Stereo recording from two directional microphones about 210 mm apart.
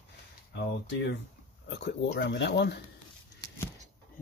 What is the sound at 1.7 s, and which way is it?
Speech, 55° left (ahead or behind).